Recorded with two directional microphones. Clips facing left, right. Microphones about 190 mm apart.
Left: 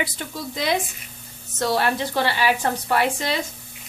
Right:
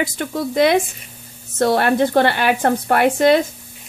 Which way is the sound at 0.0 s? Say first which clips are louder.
Right 7 dB; 60° right (ahead or behind).